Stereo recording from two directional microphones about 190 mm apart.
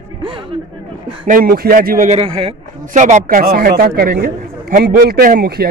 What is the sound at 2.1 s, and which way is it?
Speech, 30° right (ahead or behind).